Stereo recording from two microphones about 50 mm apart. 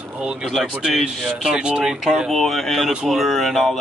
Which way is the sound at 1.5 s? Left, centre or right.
Right.